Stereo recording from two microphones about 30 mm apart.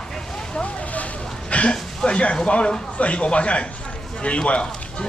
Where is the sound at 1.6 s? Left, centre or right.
Left.